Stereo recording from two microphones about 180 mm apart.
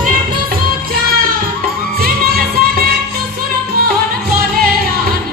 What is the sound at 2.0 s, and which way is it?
Music, 55° right (ahead or behind).